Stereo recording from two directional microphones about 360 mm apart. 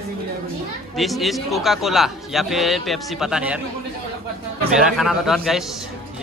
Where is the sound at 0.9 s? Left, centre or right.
Centre.